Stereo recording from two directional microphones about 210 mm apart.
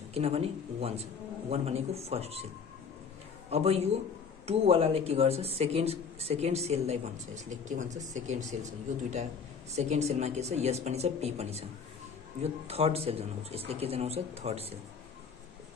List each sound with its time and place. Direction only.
0.1 s speech: 30° right (ahead or behind)
3.4 s a man's voice: 30° right (ahead or behind)
9.8 s a woman's voice: 30° right (ahead or behind)